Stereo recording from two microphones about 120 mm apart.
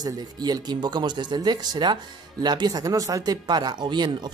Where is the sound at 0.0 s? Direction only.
35° right (ahead or behind).